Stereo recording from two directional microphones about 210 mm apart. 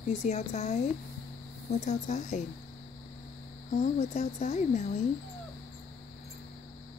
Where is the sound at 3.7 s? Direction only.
35° left (ahead or behind).